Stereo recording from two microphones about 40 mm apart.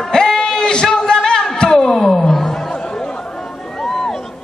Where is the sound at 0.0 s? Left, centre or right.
Centre.